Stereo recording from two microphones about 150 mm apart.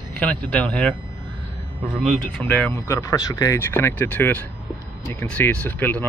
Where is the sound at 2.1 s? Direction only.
5° left (ahead or behind).